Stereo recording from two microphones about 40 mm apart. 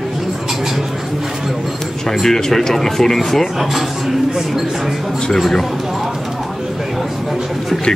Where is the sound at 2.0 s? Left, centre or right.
Centre.